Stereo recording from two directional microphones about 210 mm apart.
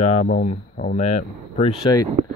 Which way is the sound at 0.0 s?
35° left (ahead or behind).